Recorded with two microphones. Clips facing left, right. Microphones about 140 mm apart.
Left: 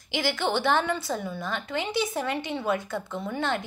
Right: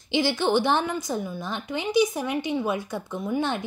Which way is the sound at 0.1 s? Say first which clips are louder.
Right 4 dB; 20° right (ahead or behind).